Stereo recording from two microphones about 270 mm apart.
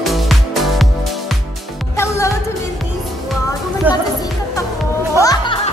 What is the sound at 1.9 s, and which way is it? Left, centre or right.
Music, centre.